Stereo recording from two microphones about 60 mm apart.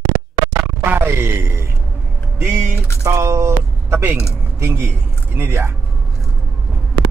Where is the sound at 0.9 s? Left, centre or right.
Right.